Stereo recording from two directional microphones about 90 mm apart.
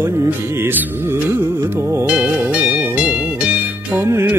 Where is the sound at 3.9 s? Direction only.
25° right (ahead or behind).